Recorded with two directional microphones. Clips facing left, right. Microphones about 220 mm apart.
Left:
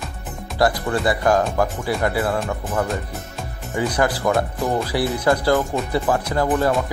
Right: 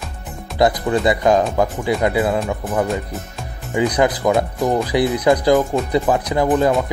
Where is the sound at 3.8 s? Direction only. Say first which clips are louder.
Right 4 dB; 20° right (ahead or behind).